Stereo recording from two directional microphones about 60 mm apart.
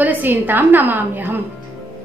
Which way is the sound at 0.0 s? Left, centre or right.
Right.